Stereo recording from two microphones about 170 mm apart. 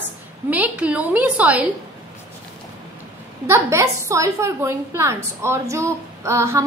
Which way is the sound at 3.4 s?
15° right (ahead or behind).